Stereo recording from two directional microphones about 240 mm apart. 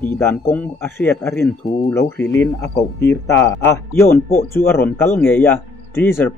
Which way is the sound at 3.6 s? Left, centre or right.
Centre.